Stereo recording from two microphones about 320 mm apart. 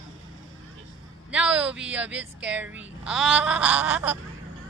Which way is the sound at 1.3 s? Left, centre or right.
Centre.